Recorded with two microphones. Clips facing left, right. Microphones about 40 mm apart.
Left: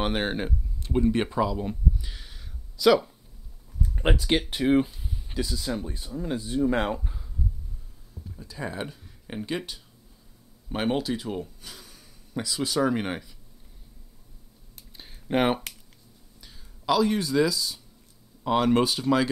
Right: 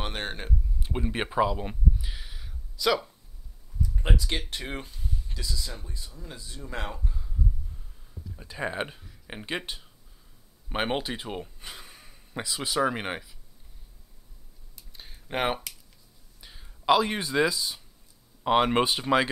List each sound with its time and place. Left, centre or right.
0.0 s speech: centre
0.7 s speech: centre
2.0 s a sound: centre
3.8 s speech: left
4.4 s speech: centre; by 6.9 s left
6.9 s speech: centre
8.4 s speech: right
9.5 s speech: right
15.0 s a sound: centre
16.3 s a sound: right
18.4 s speech: right